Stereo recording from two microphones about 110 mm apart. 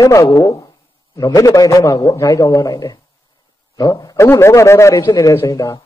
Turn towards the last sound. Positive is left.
turn(degrees=25)  # may be behind; listen again after turning